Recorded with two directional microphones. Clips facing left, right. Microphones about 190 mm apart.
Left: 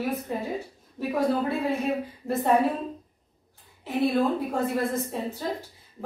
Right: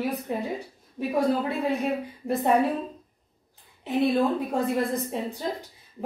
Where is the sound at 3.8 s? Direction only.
15° right (ahead or behind).